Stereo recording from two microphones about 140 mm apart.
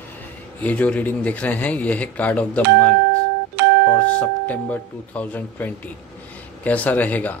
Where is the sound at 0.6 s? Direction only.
10° left (ahead or behind).